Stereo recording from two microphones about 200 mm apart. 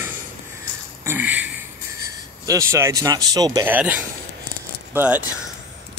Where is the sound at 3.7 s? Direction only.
10° right (ahead or behind).